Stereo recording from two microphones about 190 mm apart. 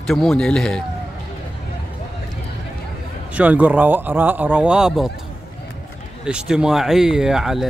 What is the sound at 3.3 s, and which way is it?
A man's voice, 5° right (ahead or behind).